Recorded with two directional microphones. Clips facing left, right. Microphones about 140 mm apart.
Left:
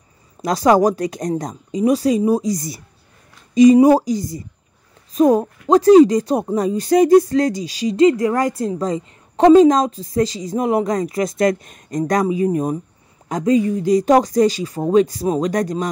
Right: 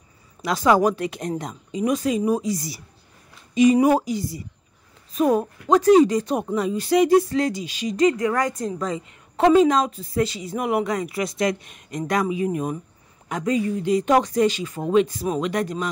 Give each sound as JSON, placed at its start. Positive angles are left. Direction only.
{"t": 0.4, "sound": "speech", "side_deg": 40}